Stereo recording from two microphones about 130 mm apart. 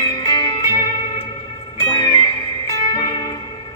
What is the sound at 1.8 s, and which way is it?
Music, 35° left (ahead or behind).